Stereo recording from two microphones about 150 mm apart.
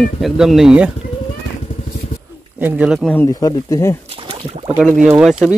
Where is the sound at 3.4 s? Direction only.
20° left (ahead or behind).